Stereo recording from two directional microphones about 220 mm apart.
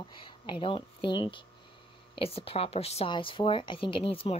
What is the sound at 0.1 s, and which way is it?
Speech, 20° left (ahead or behind).